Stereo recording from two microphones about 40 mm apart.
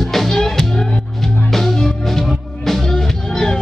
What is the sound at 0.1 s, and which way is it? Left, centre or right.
Music, centre.